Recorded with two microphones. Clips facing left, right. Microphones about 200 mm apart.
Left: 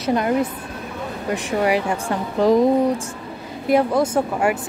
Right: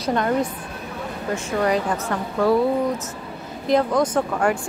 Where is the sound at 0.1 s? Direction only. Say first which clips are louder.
Left 2 dB; 10° left (ahead or behind).